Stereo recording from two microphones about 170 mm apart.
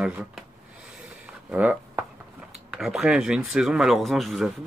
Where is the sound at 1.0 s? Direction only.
10° right (ahead or behind).